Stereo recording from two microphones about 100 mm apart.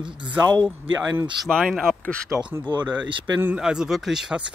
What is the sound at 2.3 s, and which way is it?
Speech, 10° right (ahead or behind).